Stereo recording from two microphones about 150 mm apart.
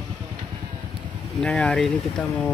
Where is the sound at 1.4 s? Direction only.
5° left (ahead or behind).